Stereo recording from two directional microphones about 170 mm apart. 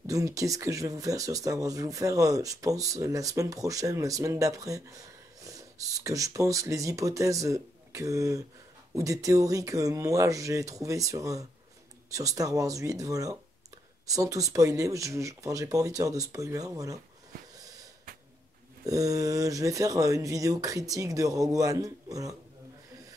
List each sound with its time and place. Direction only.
0.0 s speech: 20° right (ahead or behind)
18.9 s speech: 20° right (ahead or behind)